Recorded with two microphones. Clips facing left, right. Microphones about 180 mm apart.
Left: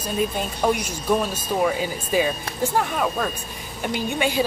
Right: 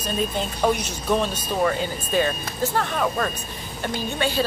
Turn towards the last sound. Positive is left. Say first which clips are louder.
# left 2 dB
turn(degrees=15)  # may be behind; listen again after turning